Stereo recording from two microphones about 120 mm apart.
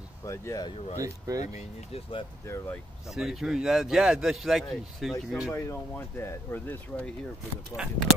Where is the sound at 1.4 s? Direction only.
70° left (ahead or behind).